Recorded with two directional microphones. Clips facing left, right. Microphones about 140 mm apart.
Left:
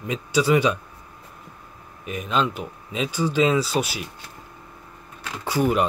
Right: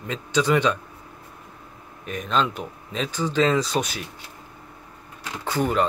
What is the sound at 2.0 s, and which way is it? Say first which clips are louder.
Speech: even; 5° left (ahead or behind).